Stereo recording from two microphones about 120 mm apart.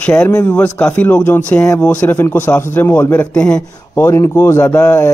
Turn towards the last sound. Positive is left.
turn(degrees=25)  # may be behind; listen again after turning